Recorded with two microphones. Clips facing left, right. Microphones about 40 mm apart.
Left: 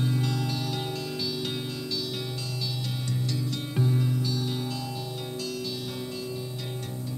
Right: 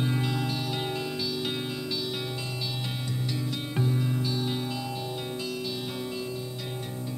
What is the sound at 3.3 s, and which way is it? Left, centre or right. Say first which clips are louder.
Music: left 1 dB; centre.